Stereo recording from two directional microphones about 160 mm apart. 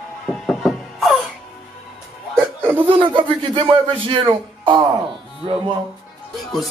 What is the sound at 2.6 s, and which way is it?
Speech, 10° right (ahead or behind).